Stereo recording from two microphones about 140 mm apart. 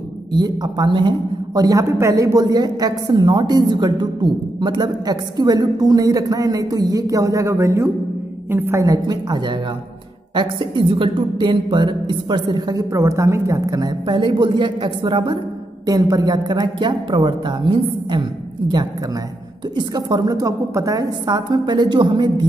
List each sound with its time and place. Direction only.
0.3 s a woman's voice: 30° right (ahead or behind)
19.8 s a woman's voice: 30° right (ahead or behind)